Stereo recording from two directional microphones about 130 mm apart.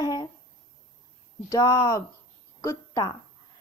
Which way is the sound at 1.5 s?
25° left (ahead or behind).